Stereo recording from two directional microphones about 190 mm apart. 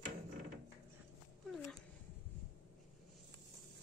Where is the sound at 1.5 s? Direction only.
Centre (ahead or behind).